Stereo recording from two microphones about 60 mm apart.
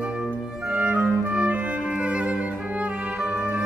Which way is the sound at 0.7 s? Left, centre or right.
Centre.